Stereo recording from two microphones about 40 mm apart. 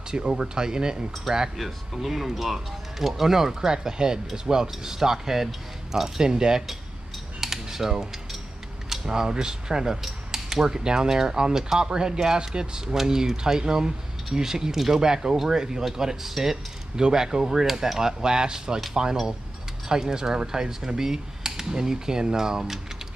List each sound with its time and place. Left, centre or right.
0.1 s speech: centre
1.3 s speech: centre
7.3 s typing: centre
8.8 s speech: centre